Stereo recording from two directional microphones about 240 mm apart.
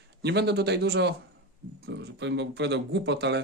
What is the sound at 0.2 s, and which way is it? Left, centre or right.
Speech, right.